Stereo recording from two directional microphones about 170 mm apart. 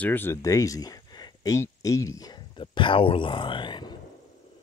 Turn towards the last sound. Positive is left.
turn(degrees=25)  # may be behind; listen again after turning